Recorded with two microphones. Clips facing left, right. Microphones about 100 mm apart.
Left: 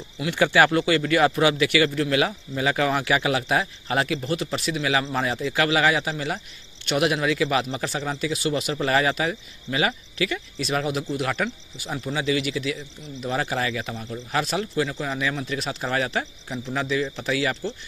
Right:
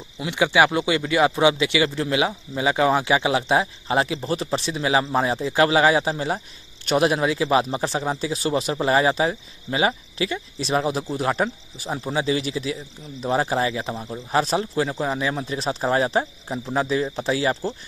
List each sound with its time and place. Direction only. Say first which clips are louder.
0.2 s a man's voice: even; 15° right (ahead or behind); by 17.7 s 35° right (ahead or behind)